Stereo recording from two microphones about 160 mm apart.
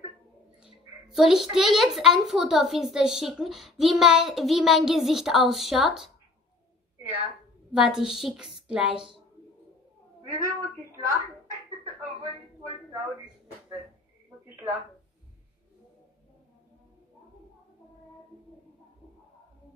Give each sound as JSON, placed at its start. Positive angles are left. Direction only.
{"t": 1.1, "sound": "a child's voice", "side_deg": -5}
{"t": 7.7, "sound": "a child's voice", "side_deg": -5}
{"t": 10.3, "sound": "speech", "side_deg": -15}